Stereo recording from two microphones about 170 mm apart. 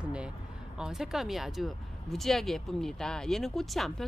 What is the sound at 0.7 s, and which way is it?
Speech, 5° right (ahead or behind).